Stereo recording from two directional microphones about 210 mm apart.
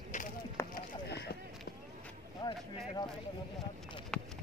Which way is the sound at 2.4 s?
20° left (ahead or behind).